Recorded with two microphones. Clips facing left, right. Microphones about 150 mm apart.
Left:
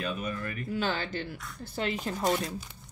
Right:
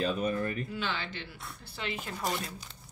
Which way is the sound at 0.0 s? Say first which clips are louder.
Right 4 dB; 30° right (ahead or behind).